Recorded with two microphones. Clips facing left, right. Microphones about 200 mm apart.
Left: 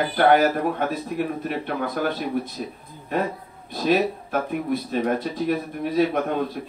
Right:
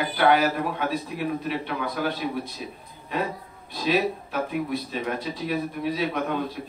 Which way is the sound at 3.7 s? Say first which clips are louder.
Left 3 dB; 45° left (ahead or behind).